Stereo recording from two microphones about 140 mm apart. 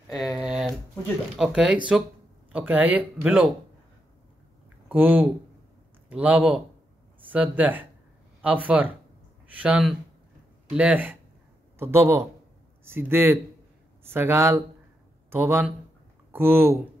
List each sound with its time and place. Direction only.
0.1 s speech: centre (ahead or behind)
4.8 s a man's voice: 15° right (ahead or behind)